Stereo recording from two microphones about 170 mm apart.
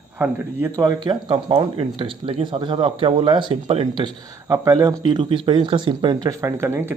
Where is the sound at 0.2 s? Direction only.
15° right (ahead or behind).